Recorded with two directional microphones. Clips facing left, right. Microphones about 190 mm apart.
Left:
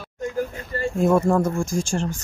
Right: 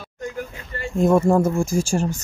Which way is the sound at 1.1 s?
20° right (ahead or behind).